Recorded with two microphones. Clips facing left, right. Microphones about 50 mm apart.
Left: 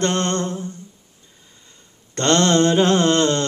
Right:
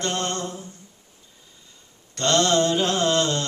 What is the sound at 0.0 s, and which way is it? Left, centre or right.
Humming, left.